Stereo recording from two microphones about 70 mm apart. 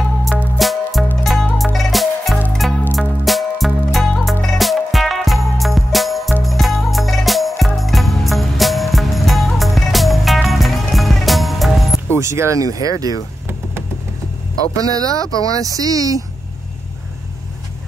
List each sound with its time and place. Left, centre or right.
0.6 s music: centre
12.2 s speech: right
14.8 s speech: right